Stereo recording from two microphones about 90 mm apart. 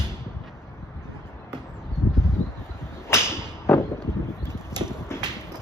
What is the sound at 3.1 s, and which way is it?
Whip, 30° left (ahead or behind).